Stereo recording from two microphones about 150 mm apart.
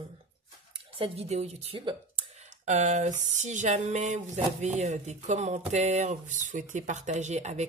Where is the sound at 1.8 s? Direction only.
30° right (ahead or behind).